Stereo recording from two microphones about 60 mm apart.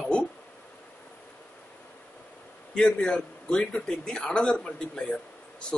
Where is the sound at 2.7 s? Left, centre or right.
Centre.